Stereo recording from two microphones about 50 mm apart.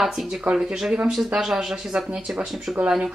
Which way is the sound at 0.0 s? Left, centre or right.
Centre.